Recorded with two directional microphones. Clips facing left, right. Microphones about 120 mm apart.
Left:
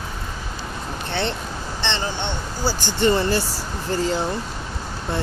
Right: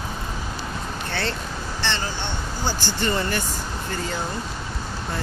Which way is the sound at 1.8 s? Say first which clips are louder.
Left 2 dB; 20° left (ahead or behind).